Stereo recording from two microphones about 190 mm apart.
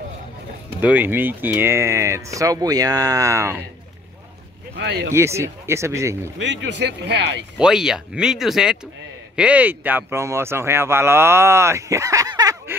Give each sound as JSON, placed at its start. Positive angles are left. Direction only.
{"t": 0.7, "sound": "speech", "side_deg": -10}
{"t": 4.7, "sound": "speech", "side_deg": -75}
{"t": 5.1, "sound": "speech", "side_deg": -15}
{"t": 6.3, "sound": "speech", "side_deg": -70}
{"t": 7.5, "sound": "speech", "side_deg": -5}